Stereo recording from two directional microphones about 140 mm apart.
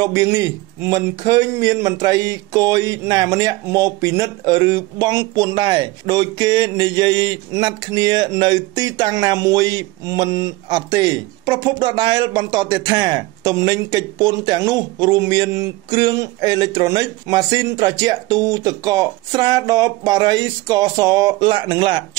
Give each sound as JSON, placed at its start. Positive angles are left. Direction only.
{"t": 0.0, "sound": "a man's voice", "side_deg": -25}